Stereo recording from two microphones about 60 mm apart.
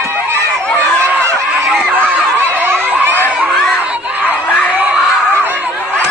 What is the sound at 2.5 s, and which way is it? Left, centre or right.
Snicker, right.